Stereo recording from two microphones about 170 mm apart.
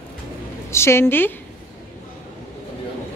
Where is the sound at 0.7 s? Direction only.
15° left (ahead or behind).